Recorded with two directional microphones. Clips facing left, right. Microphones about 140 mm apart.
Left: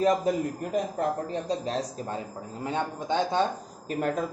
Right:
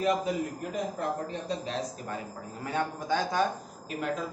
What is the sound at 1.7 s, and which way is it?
A man's voice, 35° left (ahead or behind).